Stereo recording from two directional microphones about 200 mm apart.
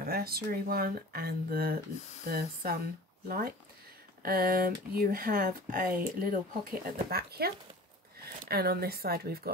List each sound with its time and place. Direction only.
0.0 s speech: 50° right (ahead or behind)